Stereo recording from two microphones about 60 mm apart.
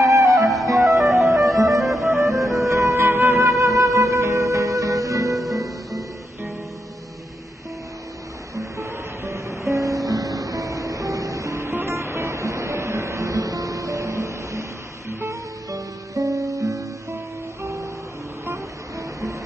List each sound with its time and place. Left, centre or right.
0.0 s music: right
0.7 s music: centre
2.7 s music: right
5.4 s music: centre
8.5 s music: right
18.4 s music: right